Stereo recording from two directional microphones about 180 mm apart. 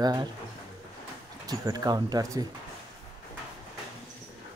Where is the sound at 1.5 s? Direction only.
20° right (ahead or behind).